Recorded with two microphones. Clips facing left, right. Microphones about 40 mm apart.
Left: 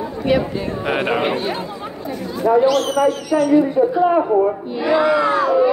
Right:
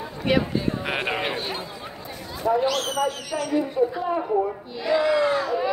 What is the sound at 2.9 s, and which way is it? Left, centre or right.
Speech, left.